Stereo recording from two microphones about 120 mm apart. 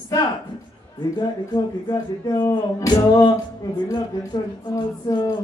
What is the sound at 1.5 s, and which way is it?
Speech, 35° left (ahead or behind).